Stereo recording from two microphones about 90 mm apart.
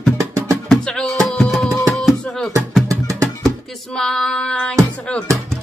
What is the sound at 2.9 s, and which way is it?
Music, 35° right (ahead or behind).